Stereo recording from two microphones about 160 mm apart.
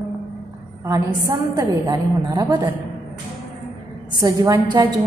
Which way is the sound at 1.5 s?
20° right (ahead or behind).